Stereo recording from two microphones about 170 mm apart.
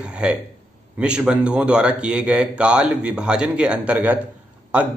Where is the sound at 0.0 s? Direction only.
5° right (ahead or behind).